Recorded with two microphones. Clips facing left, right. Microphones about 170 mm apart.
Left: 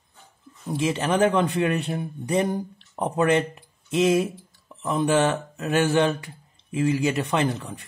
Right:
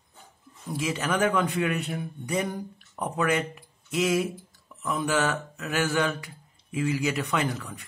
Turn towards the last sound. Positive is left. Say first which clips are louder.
# left 4 dB
turn(degrees=30)  # may be behind; listen again after turning